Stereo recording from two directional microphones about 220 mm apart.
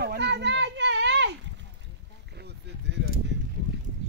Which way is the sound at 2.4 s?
50° right (ahead or behind).